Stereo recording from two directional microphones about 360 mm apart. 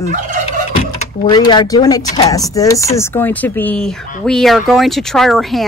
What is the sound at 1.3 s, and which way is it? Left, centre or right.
Speech, centre.